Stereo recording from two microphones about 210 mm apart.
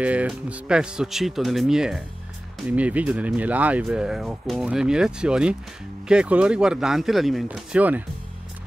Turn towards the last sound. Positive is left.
turn(degrees=-5)  # may be behind; listen again after turning